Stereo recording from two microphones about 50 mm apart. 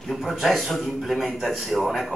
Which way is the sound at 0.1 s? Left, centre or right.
Centre.